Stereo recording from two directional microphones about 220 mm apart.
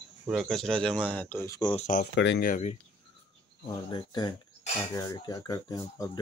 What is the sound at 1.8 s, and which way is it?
Speech, 40° left (ahead or behind).